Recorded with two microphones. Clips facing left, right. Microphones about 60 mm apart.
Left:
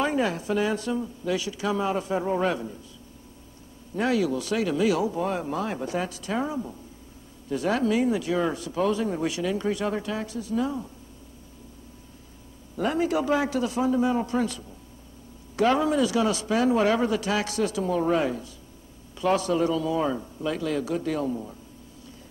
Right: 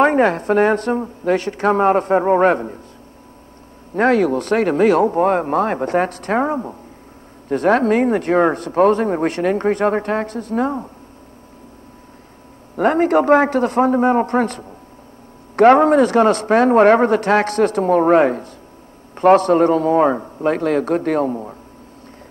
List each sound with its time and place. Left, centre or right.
0.0 s a man's voice: right
3.9 s a man's voice: right
12.7 s a man's voice: right